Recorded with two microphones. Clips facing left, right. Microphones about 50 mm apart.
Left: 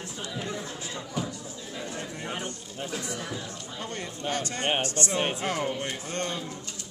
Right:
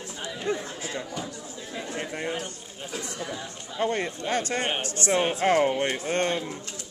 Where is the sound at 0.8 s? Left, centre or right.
Right.